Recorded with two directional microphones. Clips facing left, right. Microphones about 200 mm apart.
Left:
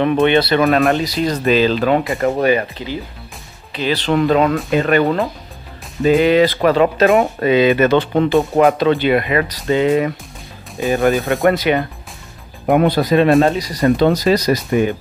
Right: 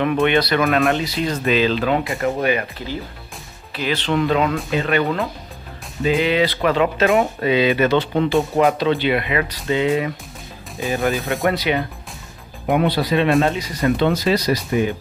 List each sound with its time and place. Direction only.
0.0 s speech: 30° left (ahead or behind)
3.9 s speech: 40° left (ahead or behind)